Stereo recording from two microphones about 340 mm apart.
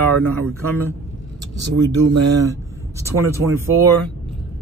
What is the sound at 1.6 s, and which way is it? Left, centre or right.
Speech, right.